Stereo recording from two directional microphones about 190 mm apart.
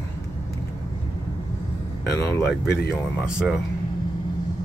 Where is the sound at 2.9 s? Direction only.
5° right (ahead or behind).